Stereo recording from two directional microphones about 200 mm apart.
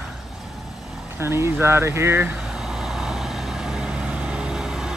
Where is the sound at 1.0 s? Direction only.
10° right (ahead or behind).